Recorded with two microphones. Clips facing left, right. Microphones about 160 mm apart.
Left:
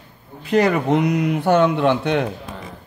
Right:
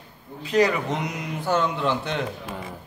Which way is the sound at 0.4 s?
55° left (ahead or behind).